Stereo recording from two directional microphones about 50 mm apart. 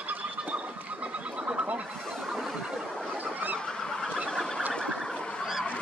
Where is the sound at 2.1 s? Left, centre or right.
Centre.